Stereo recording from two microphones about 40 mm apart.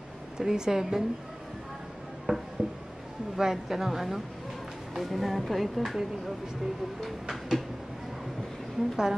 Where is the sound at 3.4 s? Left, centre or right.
Centre.